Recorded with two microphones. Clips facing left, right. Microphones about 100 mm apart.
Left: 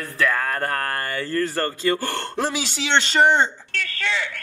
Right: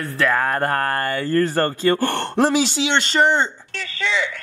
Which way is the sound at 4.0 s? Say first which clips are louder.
Right 4 dB; 55° left (ahead or behind).